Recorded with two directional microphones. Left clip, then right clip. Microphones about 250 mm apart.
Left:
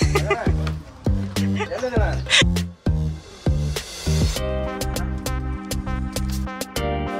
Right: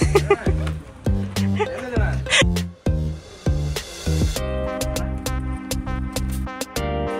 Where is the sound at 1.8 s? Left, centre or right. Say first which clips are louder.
Left 3 dB; left.